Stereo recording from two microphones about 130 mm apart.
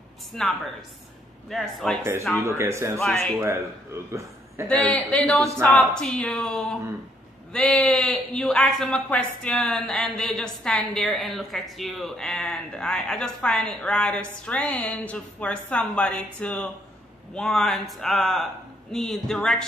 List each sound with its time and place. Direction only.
0.3 s speech: centre (ahead or behind)
2.3 s speech: 20° right (ahead or behind)
3.0 s speech: 5° left (ahead or behind)
4.6 s a woman's voice: 10° left (ahead or behind)